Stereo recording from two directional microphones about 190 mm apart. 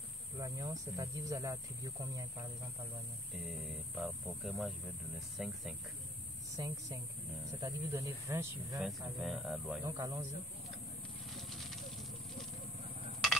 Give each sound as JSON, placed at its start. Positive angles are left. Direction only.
{"t": 0.4, "sound": "speech", "side_deg": -20}
{"t": 3.4, "sound": "speech", "side_deg": 0}
{"t": 6.5, "sound": "speech", "side_deg": -20}
{"t": 8.7, "sound": "speech", "side_deg": 0}
{"t": 9.8, "sound": "speech", "side_deg": -20}